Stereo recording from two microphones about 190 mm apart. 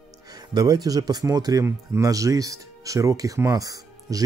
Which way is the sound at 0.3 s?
20° right (ahead or behind).